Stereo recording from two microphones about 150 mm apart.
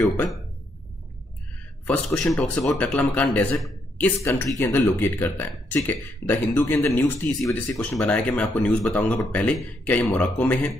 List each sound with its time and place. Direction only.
2.1 s speech: 10° left (ahead or behind)
4.0 s speech: 15° left (ahead or behind)